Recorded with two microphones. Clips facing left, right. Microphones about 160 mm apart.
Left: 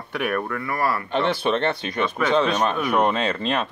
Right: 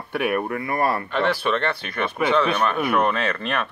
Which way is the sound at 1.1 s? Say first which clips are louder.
Even; 25° left (ahead or behind).